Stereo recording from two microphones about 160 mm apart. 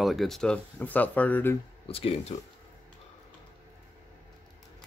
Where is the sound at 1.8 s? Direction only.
35° left (ahead or behind).